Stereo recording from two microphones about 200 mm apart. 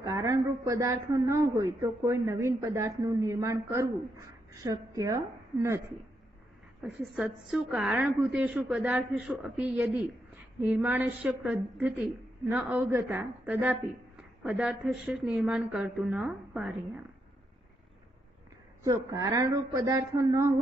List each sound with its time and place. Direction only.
0.0 s a man's voice: 15° right (ahead or behind)
6.8 s a woman's voice: centre (ahead or behind)
18.9 s a man's voice: 15° right (ahead or behind)